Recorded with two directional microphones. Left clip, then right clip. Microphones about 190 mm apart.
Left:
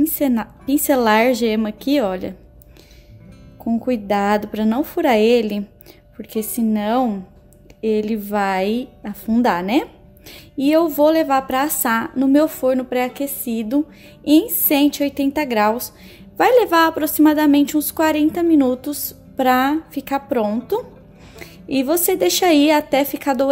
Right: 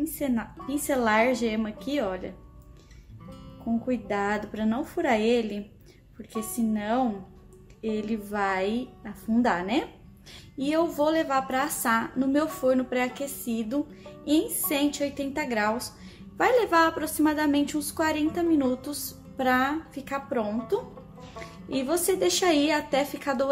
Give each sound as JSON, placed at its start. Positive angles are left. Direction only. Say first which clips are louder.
{"t": 0.2, "sound": "a woman's voice", "louder": "left 10 dB", "side_deg": 55}
{"t": 3.8, "sound": "a woman's voice", "louder": "left 10 dB", "side_deg": 55}